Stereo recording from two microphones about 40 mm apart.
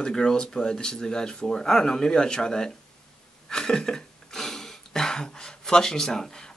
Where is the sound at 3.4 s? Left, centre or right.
Centre.